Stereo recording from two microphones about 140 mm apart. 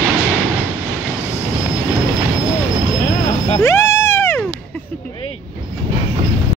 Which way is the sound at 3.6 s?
20° left (ahead or behind).